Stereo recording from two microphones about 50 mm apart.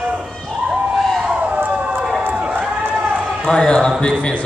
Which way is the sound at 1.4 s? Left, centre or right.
Right.